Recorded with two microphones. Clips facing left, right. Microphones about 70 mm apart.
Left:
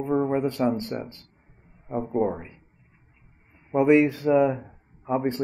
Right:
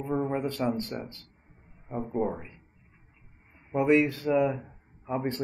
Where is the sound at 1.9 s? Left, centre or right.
Centre.